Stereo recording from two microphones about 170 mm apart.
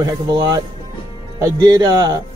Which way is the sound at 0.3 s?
25° right (ahead or behind).